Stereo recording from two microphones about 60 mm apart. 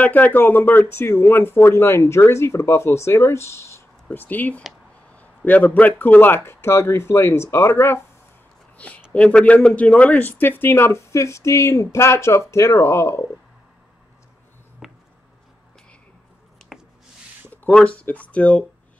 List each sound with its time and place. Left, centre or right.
0.0 s speech: left
4.1 s a man's voice: left
8.7 s a sound: left
9.1 s speech: left
14.8 s a sound: centre
17.7 s speech: left